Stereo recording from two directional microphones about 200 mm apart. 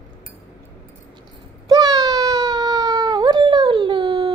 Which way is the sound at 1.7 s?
15° right (ahead or behind).